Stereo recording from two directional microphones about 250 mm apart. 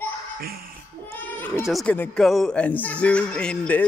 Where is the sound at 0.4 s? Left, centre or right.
Right.